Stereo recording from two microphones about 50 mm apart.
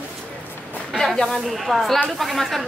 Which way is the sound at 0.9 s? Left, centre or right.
Centre.